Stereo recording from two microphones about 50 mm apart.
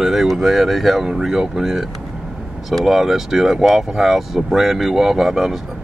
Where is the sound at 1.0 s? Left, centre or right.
Centre.